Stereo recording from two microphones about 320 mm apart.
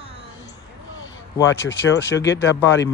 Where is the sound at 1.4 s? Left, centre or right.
Left.